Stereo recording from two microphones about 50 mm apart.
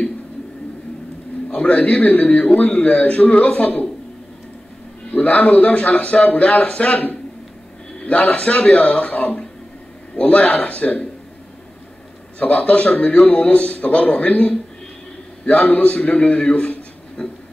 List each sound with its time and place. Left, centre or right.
1.5 s speech: left
2.2 s speech: centre
5.1 s a man's voice: left
8.0 s a sound: left
8.3 s speech: centre
9.0 s a man's voice: left
12.4 s a man's voice: left
16.3 s a man's voice: centre
17.2 s a sound: centre